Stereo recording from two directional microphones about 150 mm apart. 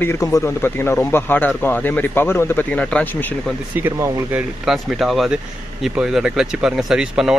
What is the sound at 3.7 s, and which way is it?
Speech, 15° right (ahead or behind).